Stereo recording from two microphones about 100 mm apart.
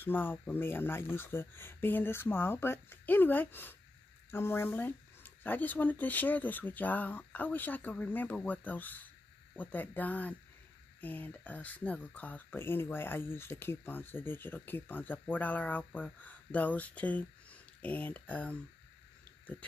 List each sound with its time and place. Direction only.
0.0 s speech: 20° left (ahead or behind)